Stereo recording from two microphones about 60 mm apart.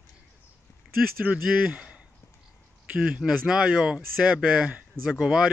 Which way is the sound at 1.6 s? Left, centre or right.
Centre.